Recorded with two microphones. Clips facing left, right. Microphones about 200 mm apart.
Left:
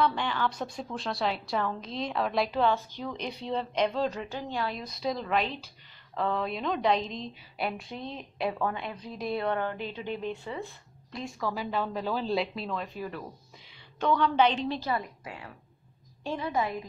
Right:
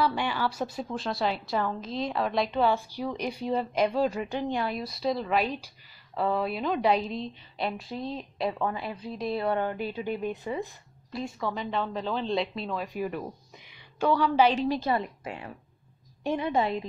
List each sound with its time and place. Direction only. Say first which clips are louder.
0.0 s a woman's voice: right 1 dB; 10° right (ahead or behind)
9.6 s a woman's voice: right 3 dB; 10° right (ahead or behind)
11.1 s a woman's voice: right 2 dB; 5° right (ahead or behind)
12.8 s a woman's voice: right 5 dB; 15° right (ahead or behind)
14.8 s a woman's voice: right 4 dB; 25° right (ahead or behind)